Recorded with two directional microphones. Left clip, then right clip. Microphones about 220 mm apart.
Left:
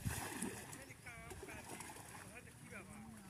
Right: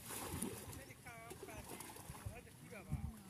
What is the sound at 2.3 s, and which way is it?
Boat, 50° right (ahead or behind).